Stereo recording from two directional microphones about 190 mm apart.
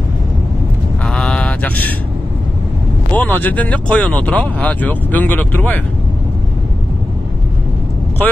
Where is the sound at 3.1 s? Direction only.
10° left (ahead or behind).